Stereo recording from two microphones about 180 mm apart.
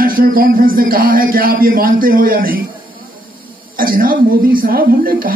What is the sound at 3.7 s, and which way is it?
Speech, 55° right (ahead or behind).